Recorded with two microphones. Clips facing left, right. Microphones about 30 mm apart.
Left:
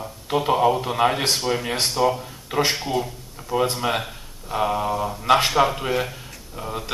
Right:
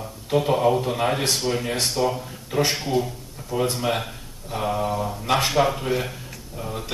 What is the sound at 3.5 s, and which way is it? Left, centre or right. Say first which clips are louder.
A man's voice: left 2 dB; centre.